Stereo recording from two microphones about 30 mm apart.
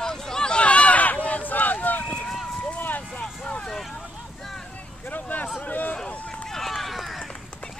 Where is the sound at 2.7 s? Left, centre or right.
Left.